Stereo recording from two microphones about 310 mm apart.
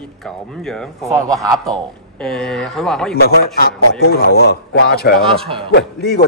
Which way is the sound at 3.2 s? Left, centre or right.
Left.